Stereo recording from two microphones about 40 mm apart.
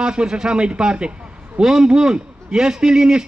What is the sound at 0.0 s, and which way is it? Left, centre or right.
A man's voice, right.